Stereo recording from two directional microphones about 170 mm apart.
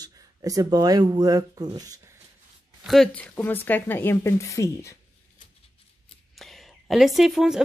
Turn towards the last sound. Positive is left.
turn(degrees=-5)  # may be behind; listen again after turning